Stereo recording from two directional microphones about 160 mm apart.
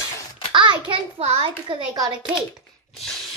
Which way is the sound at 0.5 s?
30° right (ahead or behind).